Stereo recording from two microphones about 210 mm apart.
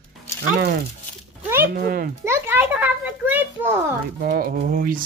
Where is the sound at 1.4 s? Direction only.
10° right (ahead or behind).